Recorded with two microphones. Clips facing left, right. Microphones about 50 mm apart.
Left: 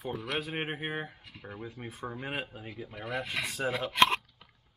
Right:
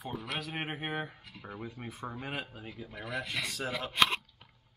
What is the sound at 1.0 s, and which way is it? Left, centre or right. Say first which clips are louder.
Speech: even; centre.